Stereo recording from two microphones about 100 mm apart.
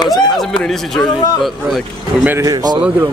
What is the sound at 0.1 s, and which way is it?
Speech, 5° left (ahead or behind).